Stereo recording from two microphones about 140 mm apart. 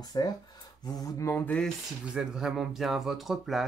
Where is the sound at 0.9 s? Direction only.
25° left (ahead or behind); by 1.7 s 10° left (ahead or behind).